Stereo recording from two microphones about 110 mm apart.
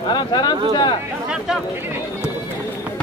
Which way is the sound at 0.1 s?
45° left (ahead or behind).